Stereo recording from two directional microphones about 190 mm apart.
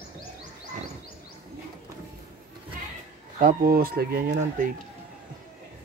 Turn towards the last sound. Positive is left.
turn(degrees=-45)  # may be behind; listen again after turning